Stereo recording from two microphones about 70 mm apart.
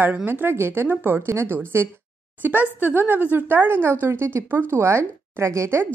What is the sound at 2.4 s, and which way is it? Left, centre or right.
A woman's voice, right.